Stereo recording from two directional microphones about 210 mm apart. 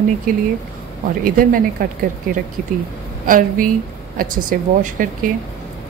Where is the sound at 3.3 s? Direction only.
40° right (ahead or behind).